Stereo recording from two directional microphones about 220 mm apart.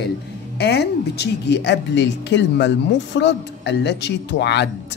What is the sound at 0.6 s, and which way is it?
Speech, 50° left (ahead or behind).